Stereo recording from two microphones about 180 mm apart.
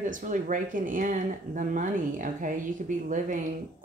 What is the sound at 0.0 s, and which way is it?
A woman's voice, 45° right (ahead or behind).